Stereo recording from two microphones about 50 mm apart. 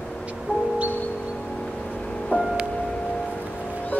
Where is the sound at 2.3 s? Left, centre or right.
Left.